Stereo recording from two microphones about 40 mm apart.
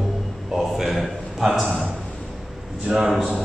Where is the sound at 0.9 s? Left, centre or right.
Centre.